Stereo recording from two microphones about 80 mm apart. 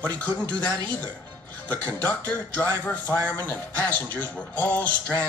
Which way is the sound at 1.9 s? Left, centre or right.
Left.